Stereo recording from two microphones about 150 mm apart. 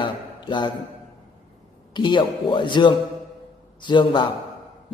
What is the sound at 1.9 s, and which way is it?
A man's voice, 30° left (ahead or behind).